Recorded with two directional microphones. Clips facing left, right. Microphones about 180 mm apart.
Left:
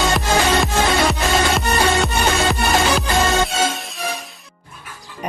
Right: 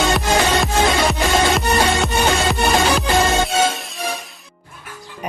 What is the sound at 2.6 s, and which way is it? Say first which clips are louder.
Music: right 1 dB; centre (ahead or behind).